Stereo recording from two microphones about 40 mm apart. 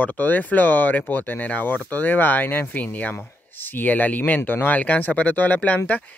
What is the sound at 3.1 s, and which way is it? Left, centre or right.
Speech, left.